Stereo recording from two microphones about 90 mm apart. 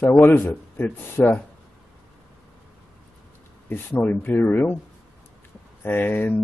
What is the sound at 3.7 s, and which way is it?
Speech, 20° left (ahead or behind).